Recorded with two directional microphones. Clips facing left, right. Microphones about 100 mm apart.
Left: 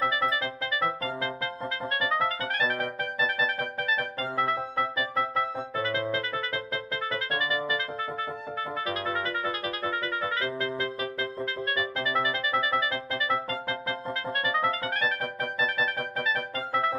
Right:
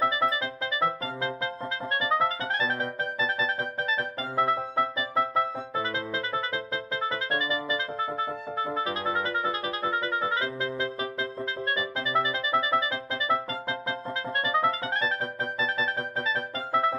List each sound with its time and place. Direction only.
0.0 s music: 25° right (ahead or behind)